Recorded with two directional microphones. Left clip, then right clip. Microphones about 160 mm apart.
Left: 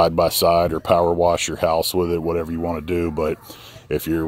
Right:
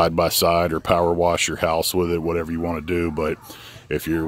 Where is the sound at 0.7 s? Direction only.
50° right (ahead or behind).